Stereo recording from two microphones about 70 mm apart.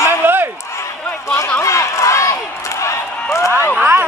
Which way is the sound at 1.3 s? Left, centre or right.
Left.